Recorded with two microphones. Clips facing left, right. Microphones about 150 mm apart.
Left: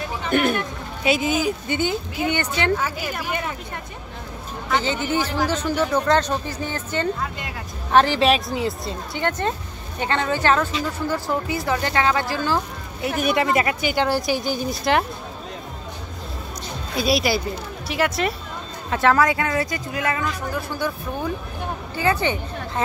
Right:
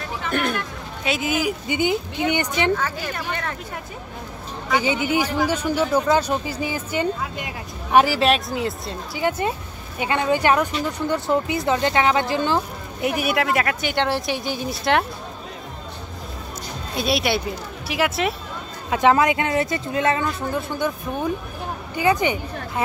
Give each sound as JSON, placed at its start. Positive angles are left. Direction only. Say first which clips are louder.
{"t": 0.3, "sound": "speech", "louder": "left 4 dB", "side_deg": 5}
{"t": 2.7, "sound": "speech", "louder": "even", "side_deg": 10}
{"t": 4.6, "sound": "speech", "louder": "right 2 dB", "side_deg": -10}
{"t": 16.9, "sound": "speech", "louder": "left 1 dB", "side_deg": 0}
{"t": 18.9, "sound": "speech", "louder": "right 1 dB", "side_deg": -15}